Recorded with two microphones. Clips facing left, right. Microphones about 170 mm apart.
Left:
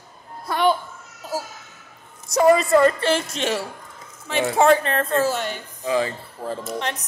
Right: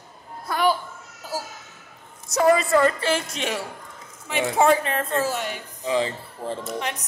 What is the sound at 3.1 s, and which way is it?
A woman's voice, 10° right (ahead or behind).